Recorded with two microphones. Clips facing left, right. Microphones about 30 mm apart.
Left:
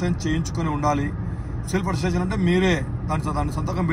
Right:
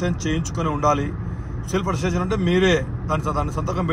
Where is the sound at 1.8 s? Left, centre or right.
Left.